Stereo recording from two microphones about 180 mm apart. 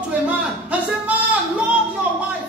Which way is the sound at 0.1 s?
10° right (ahead or behind).